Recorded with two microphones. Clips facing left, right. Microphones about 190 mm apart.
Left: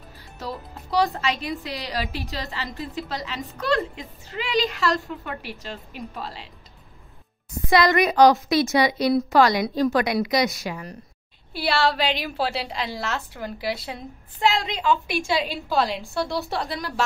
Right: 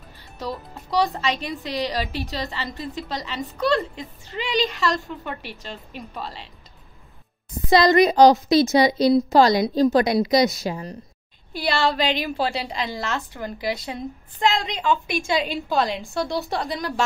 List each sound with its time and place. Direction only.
1.5 s a woman's voice: 5° left (ahead or behind)
7.7 s a woman's voice: 30° right (ahead or behind)
11.5 s a woman's voice: 5° left (ahead or behind)